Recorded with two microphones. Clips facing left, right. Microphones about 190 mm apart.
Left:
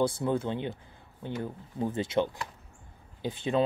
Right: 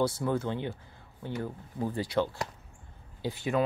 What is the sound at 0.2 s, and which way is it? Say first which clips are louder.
Speech: left 1 dB; 20° left (ahead or behind).